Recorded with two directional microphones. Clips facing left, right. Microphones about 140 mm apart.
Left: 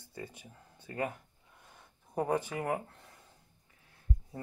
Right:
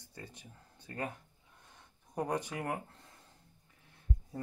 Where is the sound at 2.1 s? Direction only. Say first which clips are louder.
Left 3 dB; 10° left (ahead or behind).